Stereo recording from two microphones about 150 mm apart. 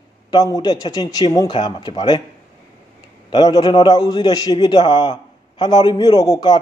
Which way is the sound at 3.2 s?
25° left (ahead or behind).